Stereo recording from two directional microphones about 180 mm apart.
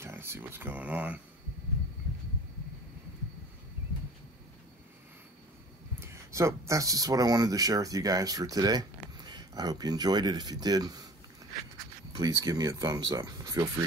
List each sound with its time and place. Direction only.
0.0 s speech: 15° right (ahead or behind)
5.9 s speech: 15° right (ahead or behind)
12.1 s speech: 20° right (ahead or behind)